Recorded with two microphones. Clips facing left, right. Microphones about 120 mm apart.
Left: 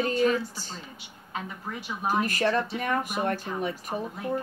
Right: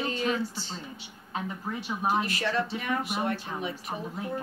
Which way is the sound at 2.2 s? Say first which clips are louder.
Left 3 dB; 45° left (ahead or behind).